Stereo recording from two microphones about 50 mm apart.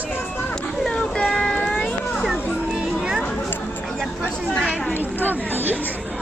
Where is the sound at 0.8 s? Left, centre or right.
Centre.